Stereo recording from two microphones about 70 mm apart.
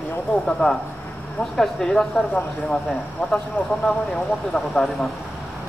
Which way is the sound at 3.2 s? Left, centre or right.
Left.